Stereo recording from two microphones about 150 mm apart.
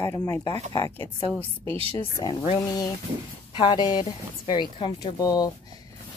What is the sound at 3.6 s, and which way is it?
Speech, 30° left (ahead or behind).